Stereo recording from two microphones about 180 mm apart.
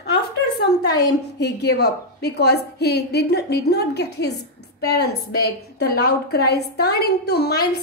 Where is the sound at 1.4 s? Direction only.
65° left (ahead or behind).